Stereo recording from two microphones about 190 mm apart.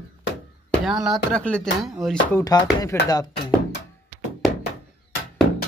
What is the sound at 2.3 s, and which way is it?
Speech, 20° left (ahead or behind).